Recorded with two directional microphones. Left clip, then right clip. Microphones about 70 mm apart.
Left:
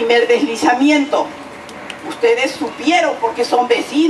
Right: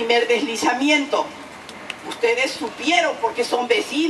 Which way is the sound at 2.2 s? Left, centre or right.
Centre.